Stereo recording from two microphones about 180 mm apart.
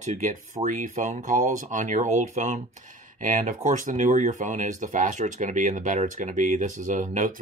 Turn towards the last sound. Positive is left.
turn(degrees=-45)  # may be behind; listen again after turning